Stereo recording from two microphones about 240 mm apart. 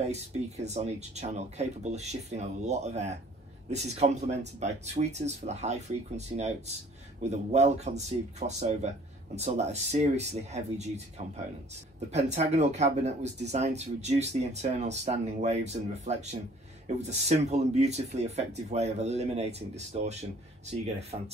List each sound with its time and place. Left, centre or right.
0.0 s speech: right